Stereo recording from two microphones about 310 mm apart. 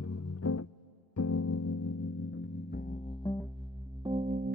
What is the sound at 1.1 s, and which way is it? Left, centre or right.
Music, left.